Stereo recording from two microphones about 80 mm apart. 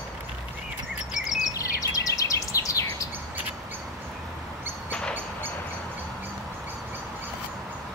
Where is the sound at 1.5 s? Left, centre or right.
Left.